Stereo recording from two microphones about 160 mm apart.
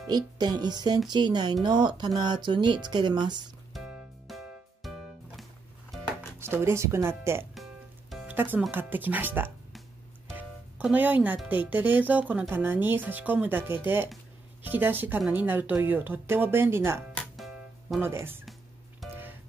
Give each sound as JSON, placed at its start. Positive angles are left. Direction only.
{"t": 0.0, "sound": "speech", "side_deg": -25}
{"t": 4.3, "sound": "music", "side_deg": 0}
{"t": 6.4, "sound": "speech", "side_deg": -15}
{"t": 8.1, "sound": "music", "side_deg": -10}
{"t": 8.7, "sound": "speech", "side_deg": -10}
{"t": 17.1, "sound": "music", "side_deg": 5}
{"t": 18.0, "sound": "speech", "side_deg": -15}
{"t": 19.0, "sound": "music", "side_deg": 0}